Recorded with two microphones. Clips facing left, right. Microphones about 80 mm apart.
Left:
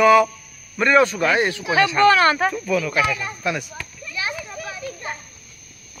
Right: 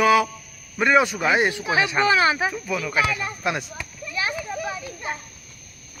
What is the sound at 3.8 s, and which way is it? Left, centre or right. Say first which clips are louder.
Children playing: right 1 dB; centre.